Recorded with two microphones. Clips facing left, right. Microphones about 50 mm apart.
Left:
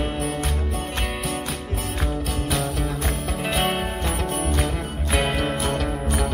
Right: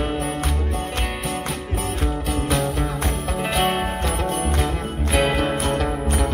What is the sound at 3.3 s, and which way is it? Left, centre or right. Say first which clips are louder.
Music: right 3 dB; centre.